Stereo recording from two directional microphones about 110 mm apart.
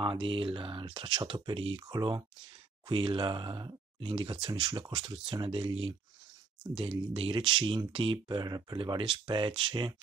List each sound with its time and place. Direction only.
0.0 s speech: 50° right (ahead or behind)
8.7 s speech: 50° right (ahead or behind)